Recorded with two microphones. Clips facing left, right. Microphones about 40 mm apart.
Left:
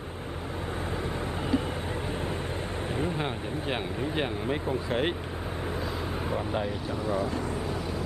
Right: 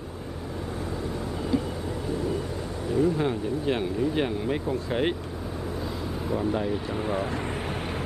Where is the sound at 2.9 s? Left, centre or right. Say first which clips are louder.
Right 9 dB; left.